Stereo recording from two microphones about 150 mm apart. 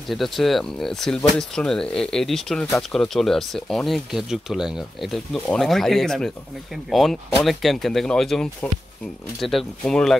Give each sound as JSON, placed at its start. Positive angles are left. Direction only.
{"t": 0.1, "sound": "speech", "side_deg": 0}